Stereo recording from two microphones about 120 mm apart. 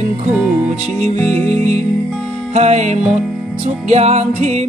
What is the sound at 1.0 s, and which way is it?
Music, 65° right (ahead or behind).